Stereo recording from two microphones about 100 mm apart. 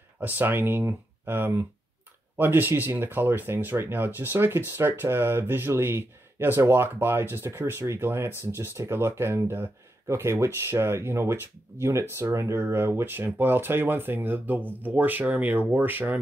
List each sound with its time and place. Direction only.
0.2 s speech: 20° right (ahead or behind)